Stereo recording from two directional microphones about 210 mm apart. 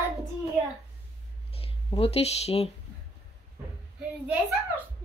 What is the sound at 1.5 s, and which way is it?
Speech, 25° left (ahead or behind).